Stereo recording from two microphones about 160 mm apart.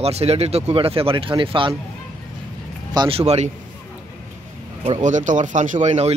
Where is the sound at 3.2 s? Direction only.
40° right (ahead or behind).